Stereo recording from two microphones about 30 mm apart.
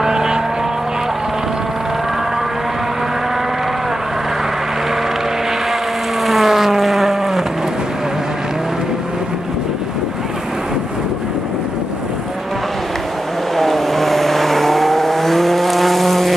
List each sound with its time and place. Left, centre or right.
0.0 s vehicle: right
6.2 s vehicle: centre
13.6 s vehicle: centre